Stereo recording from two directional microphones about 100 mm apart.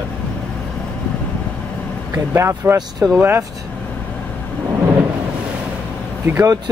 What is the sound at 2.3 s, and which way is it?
Speech, 25° right (ahead or behind).